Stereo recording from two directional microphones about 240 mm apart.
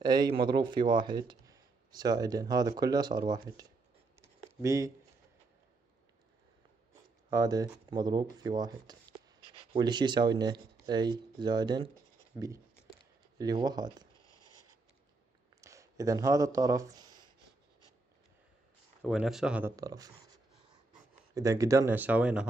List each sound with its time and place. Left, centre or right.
0.0 s speech: centre
4.2 s a sound: centre
6.9 s a sound: centre
9.7 s speech: centre
13.4 s speech: centre
14.2 s a sound: centre
15.6 s speech: centre
19.0 s speech: centre
21.4 s speech: centre